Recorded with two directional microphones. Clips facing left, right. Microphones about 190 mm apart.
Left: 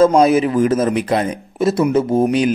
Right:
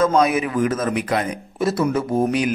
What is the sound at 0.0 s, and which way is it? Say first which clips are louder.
A man's voice: left 6 dB; 30° left (ahead or behind).